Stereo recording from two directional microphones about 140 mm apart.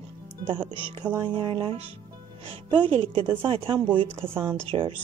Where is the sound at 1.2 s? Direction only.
35° right (ahead or behind).